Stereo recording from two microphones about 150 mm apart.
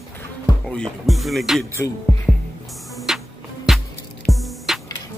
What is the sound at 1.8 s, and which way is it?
Speech, 15° left (ahead or behind).